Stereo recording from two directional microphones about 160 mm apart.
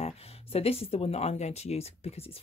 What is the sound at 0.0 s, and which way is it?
Speech, 40° left (ahead or behind).